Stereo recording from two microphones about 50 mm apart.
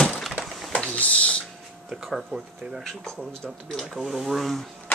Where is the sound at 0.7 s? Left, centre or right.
Left.